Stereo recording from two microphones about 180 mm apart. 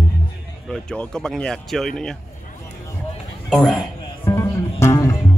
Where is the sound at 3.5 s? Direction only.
Centre (ahead or behind).